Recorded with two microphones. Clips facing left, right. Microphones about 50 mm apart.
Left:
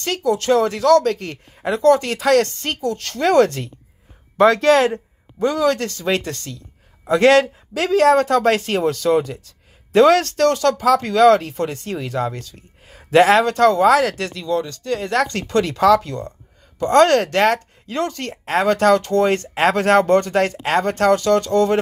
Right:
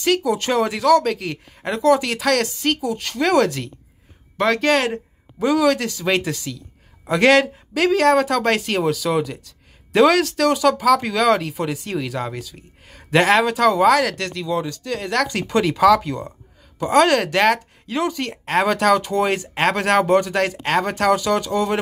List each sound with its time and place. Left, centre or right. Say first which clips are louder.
0.0 s speech: right 1 dB; centre
0.4 s speech: left 3 dB; right
1.6 s speech: left 2 dB; centre
2.8 s speech: left 1 dB; centre
3.2 s speech: left 3 dB; centre
13.9 s speech: left 2 dB; centre
14.5 s speech: left 3 dB; centre
15.4 s speech: right 2 dB; centre
18.9 s speech: left 3 dB; centre
19.2 s speech: left 3 dB; centre